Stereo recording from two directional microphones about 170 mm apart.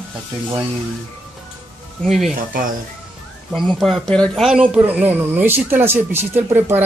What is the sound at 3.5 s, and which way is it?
Speech, centre (ahead or behind).